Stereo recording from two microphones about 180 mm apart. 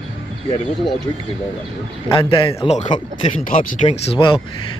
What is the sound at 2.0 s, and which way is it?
Speech, 30° left (ahead or behind).